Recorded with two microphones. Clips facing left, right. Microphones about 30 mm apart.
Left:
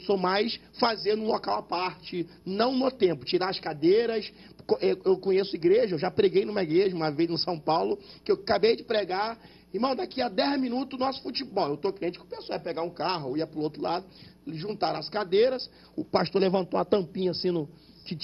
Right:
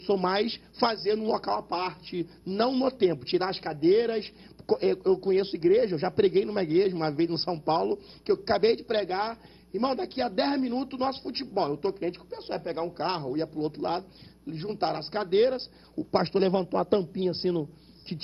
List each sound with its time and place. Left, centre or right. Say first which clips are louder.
0.0 s a man's voice: even; left